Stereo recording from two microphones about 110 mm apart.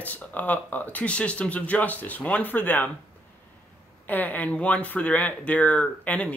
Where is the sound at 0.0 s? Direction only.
15° left (ahead or behind).